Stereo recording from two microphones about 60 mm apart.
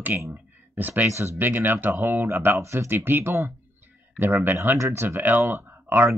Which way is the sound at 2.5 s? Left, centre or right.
Right.